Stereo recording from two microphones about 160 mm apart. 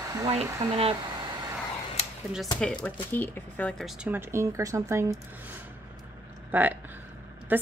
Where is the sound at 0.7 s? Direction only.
35° right (ahead or behind).